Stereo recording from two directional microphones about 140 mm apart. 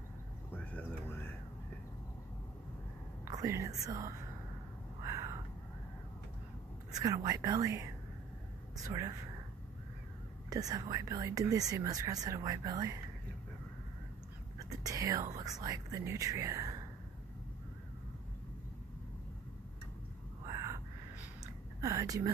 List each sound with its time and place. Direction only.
0.5 s music: 15° left (ahead or behind)
3.3 s speech: 20° right (ahead or behind)
5.0 s a sound: 25° right (ahead or behind)
6.9 s speech: 25° right (ahead or behind)
10.5 s speech: 25° right (ahead or behind)
14.7 s speech: 25° right (ahead or behind)
20.4 s a sound: 20° right (ahead or behind)
21.8 s speech: 25° right (ahead or behind)